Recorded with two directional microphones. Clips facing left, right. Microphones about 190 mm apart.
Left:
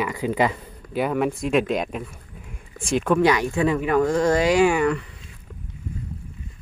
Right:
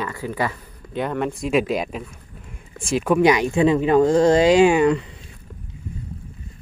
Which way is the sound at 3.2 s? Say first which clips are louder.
Right 3 dB; 15° right (ahead or behind).